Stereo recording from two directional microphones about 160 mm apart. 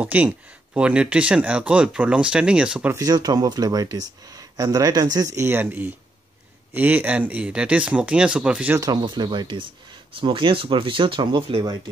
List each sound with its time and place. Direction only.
0.0 s speech: 10° right (ahead or behind)
3.0 s speech: 25° right (ahead or behind); by 8.7 s 5° right (ahead or behind)
8.7 s speech: 25° right (ahead or behind)